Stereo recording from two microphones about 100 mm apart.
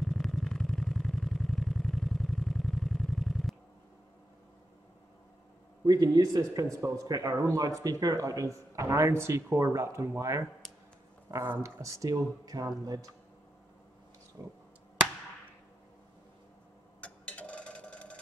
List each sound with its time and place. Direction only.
0.0 s vehicle: 5° left (ahead or behind)
5.9 s speech: 40° right (ahead or behind)
14.4 s speech: 25° right (ahead or behind)
17.0 s a sound: 10° left (ahead or behind)